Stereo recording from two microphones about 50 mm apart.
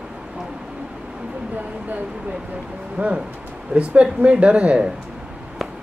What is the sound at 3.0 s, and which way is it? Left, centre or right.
Speech, right.